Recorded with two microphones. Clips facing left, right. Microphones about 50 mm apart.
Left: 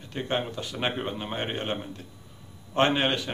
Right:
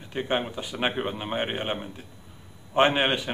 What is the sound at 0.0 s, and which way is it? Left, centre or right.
Speech, centre.